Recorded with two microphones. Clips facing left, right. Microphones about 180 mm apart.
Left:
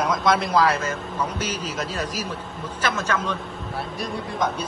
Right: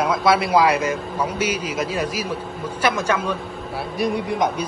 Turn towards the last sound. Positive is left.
turn(degrees=-15)  # may be behind; listen again after turning